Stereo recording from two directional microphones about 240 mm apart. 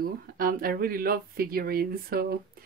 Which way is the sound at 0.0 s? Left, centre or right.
Right.